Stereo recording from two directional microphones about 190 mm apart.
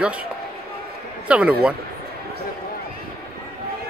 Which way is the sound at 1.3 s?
5° right (ahead or behind).